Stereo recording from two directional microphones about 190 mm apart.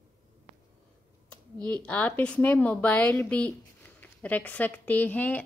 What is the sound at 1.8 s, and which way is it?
A woman's voice, 10° left (ahead or behind).